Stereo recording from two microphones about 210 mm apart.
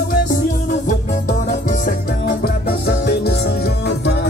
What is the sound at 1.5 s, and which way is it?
Music, 35° left (ahead or behind).